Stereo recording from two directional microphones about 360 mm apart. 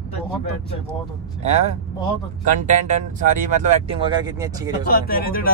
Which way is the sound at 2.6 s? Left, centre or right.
Right.